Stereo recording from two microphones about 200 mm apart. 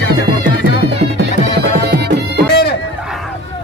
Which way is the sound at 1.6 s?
55° right (ahead or behind).